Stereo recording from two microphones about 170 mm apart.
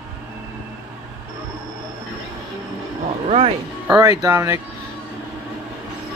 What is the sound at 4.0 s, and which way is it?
Speech, 20° right (ahead or behind).